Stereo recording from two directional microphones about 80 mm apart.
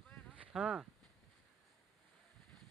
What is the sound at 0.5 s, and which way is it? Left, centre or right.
Speech, centre.